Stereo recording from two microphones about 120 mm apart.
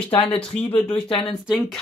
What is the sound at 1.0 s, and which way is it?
Speech, 45° left (ahead or behind).